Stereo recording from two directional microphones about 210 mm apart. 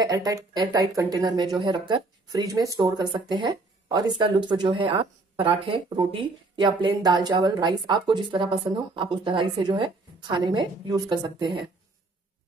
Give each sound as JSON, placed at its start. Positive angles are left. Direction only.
{"t": 0.0, "sound": "speech", "side_deg": -15}